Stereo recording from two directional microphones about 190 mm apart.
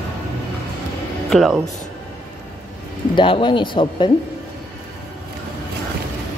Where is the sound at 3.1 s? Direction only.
25° left (ahead or behind).